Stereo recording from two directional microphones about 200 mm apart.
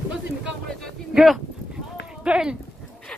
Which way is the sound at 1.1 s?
Centre (ahead or behind).